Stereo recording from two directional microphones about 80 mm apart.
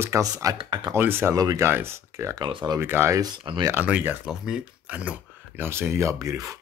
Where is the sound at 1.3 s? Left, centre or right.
Right.